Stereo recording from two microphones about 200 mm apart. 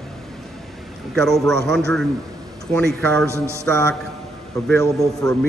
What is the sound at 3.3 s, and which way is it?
Speech, 15° right (ahead or behind).